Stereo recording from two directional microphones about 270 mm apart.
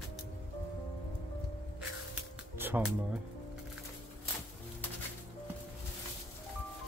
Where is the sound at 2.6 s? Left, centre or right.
Centre.